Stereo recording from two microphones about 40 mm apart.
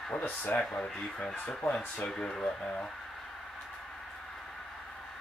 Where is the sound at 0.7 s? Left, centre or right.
Centre.